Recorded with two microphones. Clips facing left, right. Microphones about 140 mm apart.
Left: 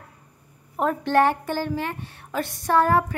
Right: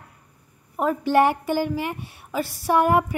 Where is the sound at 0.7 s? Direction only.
5° right (ahead or behind).